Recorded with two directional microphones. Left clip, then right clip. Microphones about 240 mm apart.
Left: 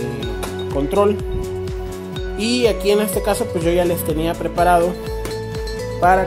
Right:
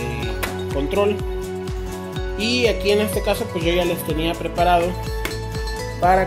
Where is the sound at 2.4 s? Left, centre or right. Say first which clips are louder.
Left 2 dB; centre.